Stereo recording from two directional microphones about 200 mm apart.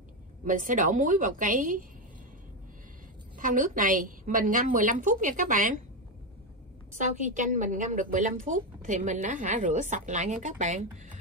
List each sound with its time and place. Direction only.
0.5 s a woman's voice: 40° right (ahead or behind)
3.3 s a woman's voice: 40° right (ahead or behind)
7.0 s a woman's voice: 40° right (ahead or behind)